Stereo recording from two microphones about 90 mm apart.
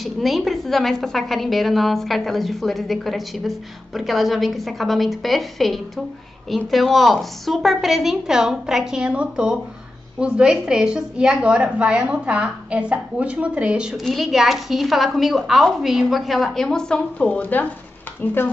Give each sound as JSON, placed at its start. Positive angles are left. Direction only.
{"t": 0.0, "sound": "a woman's voice", "side_deg": 0}